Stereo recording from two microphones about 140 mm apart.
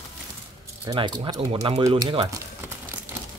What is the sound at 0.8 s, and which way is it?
Speech, 35° right (ahead or behind).